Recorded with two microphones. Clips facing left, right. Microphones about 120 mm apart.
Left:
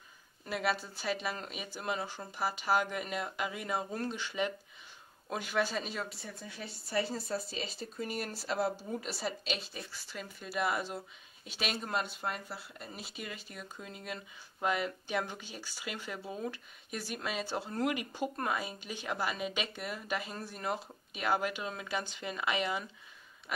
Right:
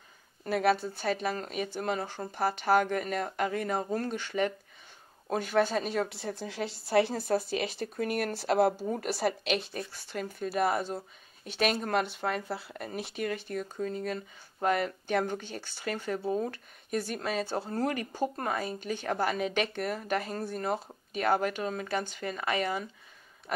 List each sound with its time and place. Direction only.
0.5 s speech: 50° right (ahead or behind)
6.1 s speech: 90° right; by 11.0 s 45° right (ahead or behind)
11.4 s speech: 55° right (ahead or behind); by 18.7 s 40° right (ahead or behind)
19.0 s speech: 50° right (ahead or behind)